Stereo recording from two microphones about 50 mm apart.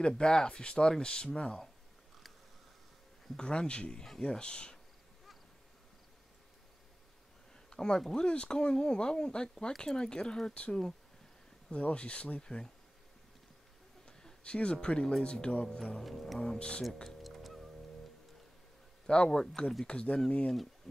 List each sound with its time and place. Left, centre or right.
0.2 s speech: centre
3.3 s speech: centre
7.7 s speech: centre
14.0 s speech: centre
15.8 s speech: centre
16.5 s speech: left
17.2 s music: centre
19.0 s speech: centre
20.9 s heart murmur: centre